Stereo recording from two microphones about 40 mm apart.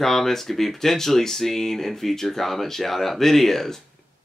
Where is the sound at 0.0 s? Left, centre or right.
Centre.